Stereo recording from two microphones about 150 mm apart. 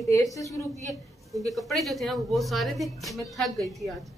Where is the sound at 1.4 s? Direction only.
Centre (ahead or behind).